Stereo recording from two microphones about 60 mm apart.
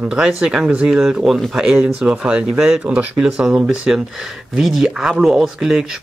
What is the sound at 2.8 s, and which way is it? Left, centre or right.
Speech, right.